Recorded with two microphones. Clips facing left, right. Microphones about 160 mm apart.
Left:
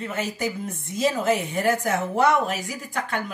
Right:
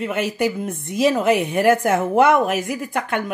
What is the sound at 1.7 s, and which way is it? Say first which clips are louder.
Speech: right 6 dB; 55° right (ahead or behind).